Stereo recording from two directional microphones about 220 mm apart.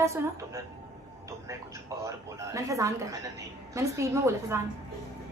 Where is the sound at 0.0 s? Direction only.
15° right (ahead or behind).